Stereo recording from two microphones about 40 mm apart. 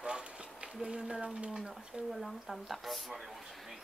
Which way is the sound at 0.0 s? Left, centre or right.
Right.